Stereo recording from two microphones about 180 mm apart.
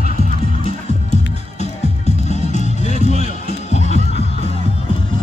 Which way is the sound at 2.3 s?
40° left (ahead or behind).